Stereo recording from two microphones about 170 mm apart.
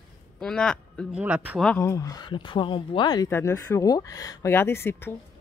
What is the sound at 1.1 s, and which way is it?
Speech, 5° right (ahead or behind).